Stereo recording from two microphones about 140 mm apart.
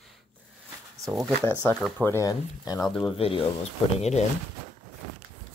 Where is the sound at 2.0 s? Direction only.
20° left (ahead or behind).